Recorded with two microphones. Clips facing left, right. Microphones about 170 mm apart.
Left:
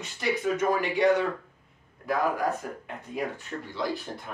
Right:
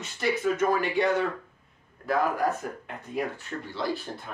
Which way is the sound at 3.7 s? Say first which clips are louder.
Even; 15° left (ahead or behind).